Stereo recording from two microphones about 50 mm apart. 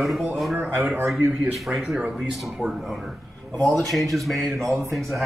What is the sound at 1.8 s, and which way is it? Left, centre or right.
Speech, centre.